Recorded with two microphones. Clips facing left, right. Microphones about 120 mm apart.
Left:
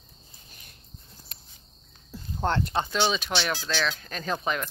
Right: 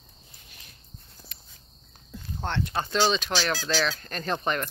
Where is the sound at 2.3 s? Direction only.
45° left (ahead or behind).